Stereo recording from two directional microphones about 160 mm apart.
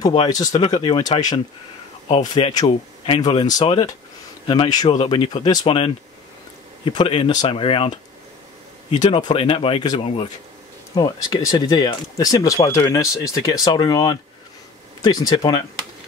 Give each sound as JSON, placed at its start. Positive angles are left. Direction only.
{"t": 0.1, "sound": "speech", "side_deg": 25}
{"t": 9.0, "sound": "speech", "side_deg": 40}
{"t": 11.0, "sound": "speech", "side_deg": 25}